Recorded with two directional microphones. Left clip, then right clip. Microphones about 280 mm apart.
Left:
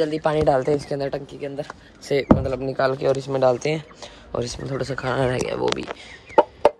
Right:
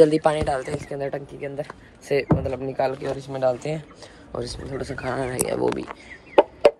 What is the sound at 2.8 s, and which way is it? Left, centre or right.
Speech, left.